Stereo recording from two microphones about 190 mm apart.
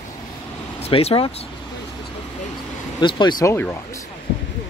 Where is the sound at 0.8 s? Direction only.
30° left (ahead or behind).